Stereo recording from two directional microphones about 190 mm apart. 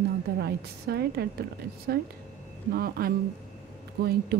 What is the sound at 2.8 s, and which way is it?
A woman's voice, 50° right (ahead or behind).